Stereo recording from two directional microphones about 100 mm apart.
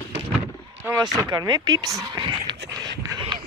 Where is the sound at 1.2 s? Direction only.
45° right (ahead or behind).